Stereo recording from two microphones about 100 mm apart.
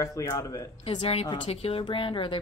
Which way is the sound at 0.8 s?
75° left (ahead or behind).